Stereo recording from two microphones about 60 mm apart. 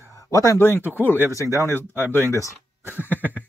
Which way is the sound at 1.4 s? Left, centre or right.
Right.